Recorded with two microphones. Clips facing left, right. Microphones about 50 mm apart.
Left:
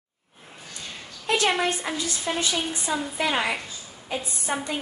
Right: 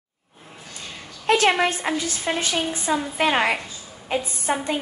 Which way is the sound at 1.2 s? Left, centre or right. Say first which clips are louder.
Right 5 dB; right.